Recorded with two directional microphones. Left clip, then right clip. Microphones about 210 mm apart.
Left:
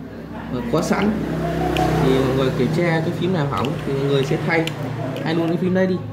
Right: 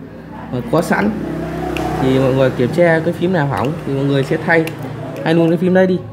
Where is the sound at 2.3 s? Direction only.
50° right (ahead or behind).